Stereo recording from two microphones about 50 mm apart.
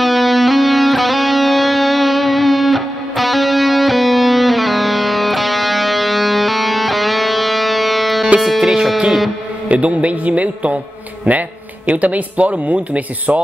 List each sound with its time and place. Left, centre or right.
0.0 s music: centre
9.7 s a man's voice: right